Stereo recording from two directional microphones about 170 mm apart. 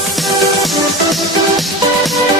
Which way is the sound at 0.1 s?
Centre (ahead or behind).